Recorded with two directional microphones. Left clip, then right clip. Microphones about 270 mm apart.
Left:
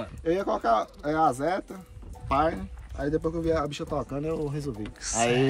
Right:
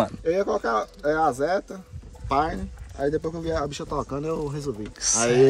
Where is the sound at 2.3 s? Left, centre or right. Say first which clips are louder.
Right 1 dB; centre.